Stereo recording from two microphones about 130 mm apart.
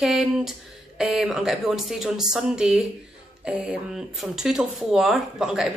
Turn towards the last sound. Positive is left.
turn(degrees=-5)  # may be behind; listen again after turning